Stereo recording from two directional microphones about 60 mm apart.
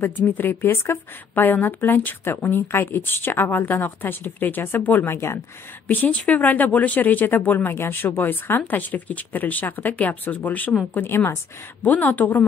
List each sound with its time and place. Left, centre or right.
0.3 s speech: left
5.1 s a woman's voice: left
5.9 s speech: left
11.0 s a woman's voice: left
11.8 s speech: left